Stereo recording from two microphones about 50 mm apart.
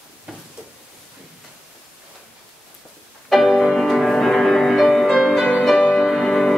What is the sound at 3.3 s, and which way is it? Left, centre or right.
Music, centre.